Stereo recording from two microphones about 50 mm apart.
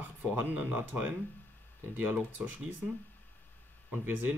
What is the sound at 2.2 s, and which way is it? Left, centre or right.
Speech, right.